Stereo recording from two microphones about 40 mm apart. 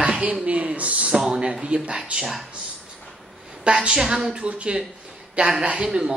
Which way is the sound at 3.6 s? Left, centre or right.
Right.